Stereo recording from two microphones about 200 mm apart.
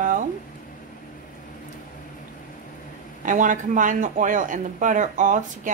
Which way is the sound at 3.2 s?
40° right (ahead or behind).